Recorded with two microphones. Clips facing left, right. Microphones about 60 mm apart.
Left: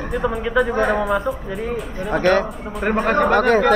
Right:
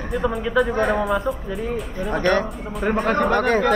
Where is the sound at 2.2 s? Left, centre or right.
Left.